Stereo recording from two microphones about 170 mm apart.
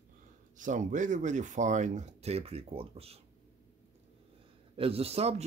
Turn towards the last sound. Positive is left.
turn(degrees=-35)  # may be behind; listen again after turning